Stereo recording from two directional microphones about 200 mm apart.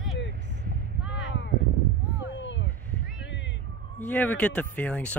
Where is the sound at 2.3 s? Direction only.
65° left (ahead or behind).